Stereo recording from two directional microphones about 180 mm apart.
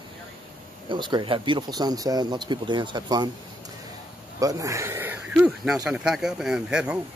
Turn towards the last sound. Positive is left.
turn(degrees=-5)  # may be behind; listen again after turning